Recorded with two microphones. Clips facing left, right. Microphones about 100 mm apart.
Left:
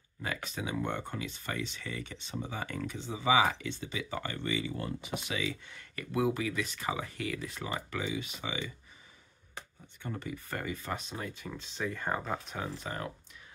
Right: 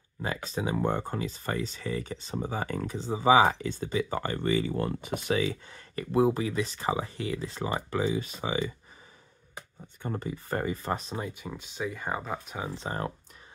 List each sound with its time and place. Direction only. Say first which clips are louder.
0.2 s speech: right 5 dB; 30° right (ahead or behind)
10.0 s speech: right 5 dB; 35° right (ahead or behind)
11.1 s speech: right 4 dB; 20° right (ahead or behind)
12.7 s speech: right 5 dB; 30° right (ahead or behind)